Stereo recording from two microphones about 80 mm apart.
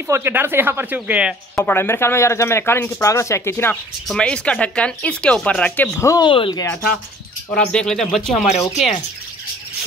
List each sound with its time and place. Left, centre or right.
0.1 s speech: right
1.5 s speech: left
3.1 s speech: left
4.2 s speech: centre
6.2 s speech: left
7.5 s speech: centre